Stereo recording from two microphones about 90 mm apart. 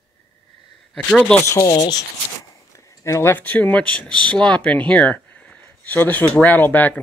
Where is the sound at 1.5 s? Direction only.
35° left (ahead or behind).